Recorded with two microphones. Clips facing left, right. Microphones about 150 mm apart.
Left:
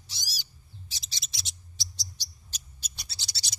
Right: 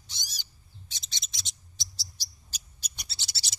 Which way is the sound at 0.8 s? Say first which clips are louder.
Even; centre (ahead or behind).